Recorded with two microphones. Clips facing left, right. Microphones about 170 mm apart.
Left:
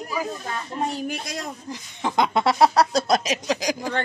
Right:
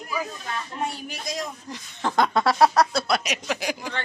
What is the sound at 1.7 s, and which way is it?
Speech, 15° left (ahead or behind).